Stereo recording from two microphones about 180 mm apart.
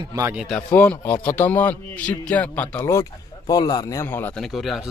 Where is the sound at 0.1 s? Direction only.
15° right (ahead or behind).